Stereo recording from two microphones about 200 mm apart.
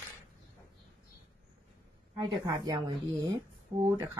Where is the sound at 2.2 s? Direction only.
20° right (ahead or behind).